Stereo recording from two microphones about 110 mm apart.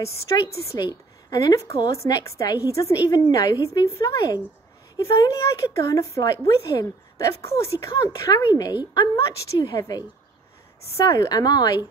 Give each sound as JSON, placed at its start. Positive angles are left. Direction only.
{"t": 0.0, "sound": "a woman's voice", "side_deg": 25}
{"t": 0.7, "sound": "speech", "side_deg": 40}
{"t": 11.1, "sound": "speech", "side_deg": 35}